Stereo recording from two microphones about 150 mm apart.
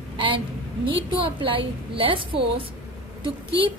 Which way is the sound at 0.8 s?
35° right (ahead or behind).